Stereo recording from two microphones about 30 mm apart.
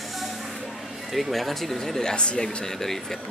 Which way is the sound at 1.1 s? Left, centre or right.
Centre.